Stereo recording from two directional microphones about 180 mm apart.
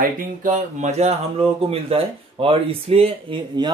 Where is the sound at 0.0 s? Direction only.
50° right (ahead or behind).